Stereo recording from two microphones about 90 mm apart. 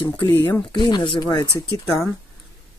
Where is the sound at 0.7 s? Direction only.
60° left (ahead or behind).